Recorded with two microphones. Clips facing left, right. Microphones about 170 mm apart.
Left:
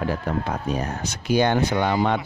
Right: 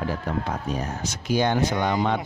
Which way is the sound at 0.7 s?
65° left (ahead or behind).